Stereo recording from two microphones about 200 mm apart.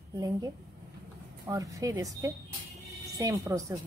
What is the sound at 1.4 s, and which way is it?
Speech, 20° right (ahead or behind).